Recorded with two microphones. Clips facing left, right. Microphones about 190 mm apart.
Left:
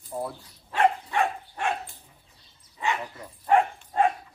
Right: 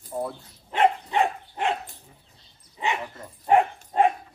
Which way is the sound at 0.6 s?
20° right (ahead or behind).